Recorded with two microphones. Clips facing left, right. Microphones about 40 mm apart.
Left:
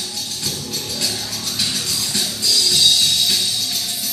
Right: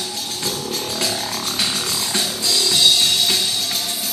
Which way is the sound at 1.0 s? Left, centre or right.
Right.